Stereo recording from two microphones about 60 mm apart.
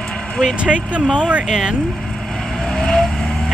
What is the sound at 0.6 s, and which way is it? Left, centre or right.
Speech, centre.